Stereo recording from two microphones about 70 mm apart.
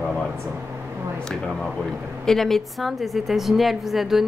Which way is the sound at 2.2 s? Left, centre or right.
Centre.